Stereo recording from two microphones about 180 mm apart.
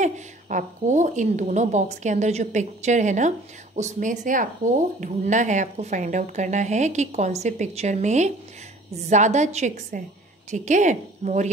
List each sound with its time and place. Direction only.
0.0 s a woman's voice: 45° right (ahead or behind)